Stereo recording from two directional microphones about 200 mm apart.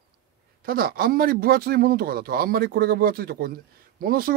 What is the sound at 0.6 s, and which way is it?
A man's voice, 50° right (ahead or behind).